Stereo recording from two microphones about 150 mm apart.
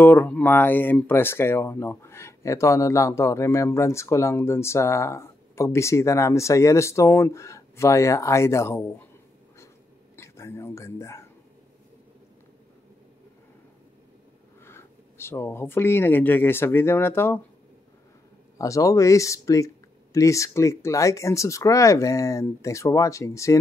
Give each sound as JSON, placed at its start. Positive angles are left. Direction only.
{"t": 0.0, "sound": "speech", "side_deg": 15}
{"t": 10.1, "sound": "a sound", "side_deg": 20}
{"t": 14.6, "sound": "speech", "side_deg": 15}
{"t": 18.6, "sound": "speech", "side_deg": 20}